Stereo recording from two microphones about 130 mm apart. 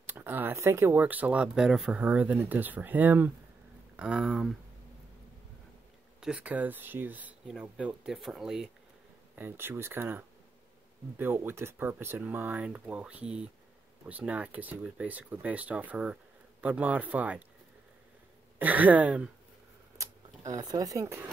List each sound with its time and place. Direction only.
0.0 s speech: 15° right (ahead or behind)
6.2 s speech: 10° right (ahead or behind)
9.3 s speech: 15° right (ahead or behind)
18.6 s speech: 10° right (ahead or behind)
20.0 s speech: 30° right (ahead or behind)